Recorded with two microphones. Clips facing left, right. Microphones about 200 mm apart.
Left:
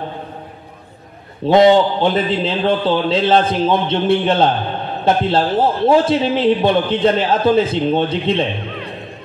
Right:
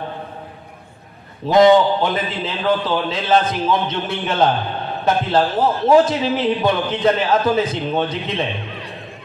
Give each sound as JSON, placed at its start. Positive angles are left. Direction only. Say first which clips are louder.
{"t": 1.4, "sound": "a man's voice", "louder": "left 1 dB", "side_deg": 25}